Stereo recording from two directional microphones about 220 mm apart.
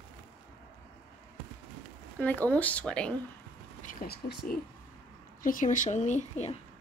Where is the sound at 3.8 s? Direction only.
40° left (ahead or behind).